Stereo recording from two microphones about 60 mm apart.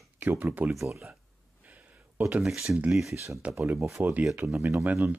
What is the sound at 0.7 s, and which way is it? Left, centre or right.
Speech, right.